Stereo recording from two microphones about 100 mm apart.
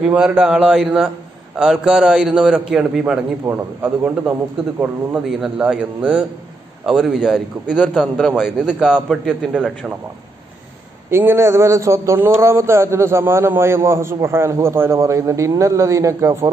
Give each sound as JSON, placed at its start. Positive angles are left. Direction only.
{"t": 0.0, "sound": "a man's voice", "side_deg": -10}
{"t": 3.4, "sound": "a man's voice", "side_deg": -20}
{"t": 5.1, "sound": "a man's voice", "side_deg": -10}
{"t": 11.1, "sound": "a man's voice", "side_deg": -25}